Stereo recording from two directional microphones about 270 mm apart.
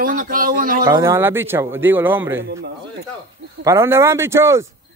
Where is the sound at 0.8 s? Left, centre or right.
Centre.